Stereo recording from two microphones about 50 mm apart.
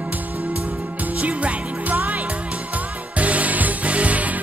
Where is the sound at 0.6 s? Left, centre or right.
Right.